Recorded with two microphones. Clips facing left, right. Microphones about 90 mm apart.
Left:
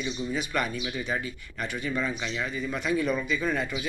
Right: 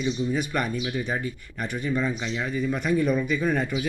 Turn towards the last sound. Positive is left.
turn(degrees=-45)  # may be behind; listen again after turning